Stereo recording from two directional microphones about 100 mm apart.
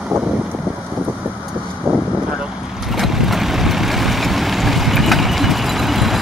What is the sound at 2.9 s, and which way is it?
Vehicle, centre (ahead or behind).